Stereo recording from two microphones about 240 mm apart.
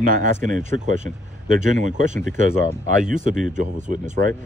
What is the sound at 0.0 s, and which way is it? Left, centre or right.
Speech, right.